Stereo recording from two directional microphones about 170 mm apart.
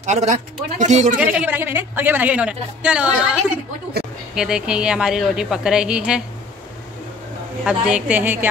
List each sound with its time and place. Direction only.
0.0 s a man's voice: 40° right (ahead or behind)
1.1 s a man's voice: 5° right (ahead or behind)
7.6 s a man's voice: 5° right (ahead or behind)